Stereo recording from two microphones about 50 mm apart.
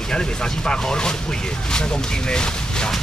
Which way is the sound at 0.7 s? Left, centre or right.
Centre.